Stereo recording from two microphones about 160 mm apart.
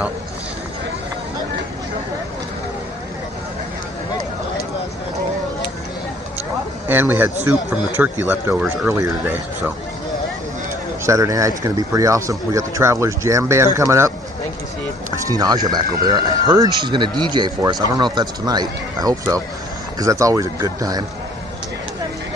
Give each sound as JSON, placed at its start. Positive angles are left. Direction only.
{"t": 6.9, "sound": "speech", "side_deg": -10}
{"t": 11.1, "sound": "speech", "side_deg": -20}
{"t": 15.2, "sound": "speech", "side_deg": -25}